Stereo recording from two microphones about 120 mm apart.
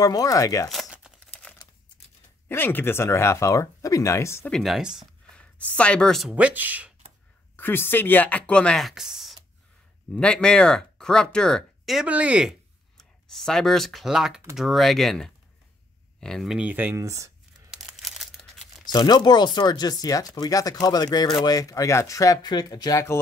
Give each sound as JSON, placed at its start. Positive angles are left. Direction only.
{"t": 0.0, "sound": "speech", "side_deg": 30}
{"t": 0.7, "sound": "crumpling", "side_deg": -5}
{"t": 2.4, "sound": "speech", "side_deg": 15}
{"t": 4.5, "sound": "speech", "side_deg": 0}
{"t": 5.3, "sound": "speech", "side_deg": 10}
{"t": 6.3, "sound": "speech", "side_deg": -15}
{"t": 7.5, "sound": "speech", "side_deg": 15}
{"t": 10.1, "sound": "speech", "side_deg": 10}
{"t": 12.9, "sound": "speech", "side_deg": 5}
{"t": 17.6, "sound": "crumpling", "side_deg": -5}
{"t": 18.9, "sound": "speech", "side_deg": 35}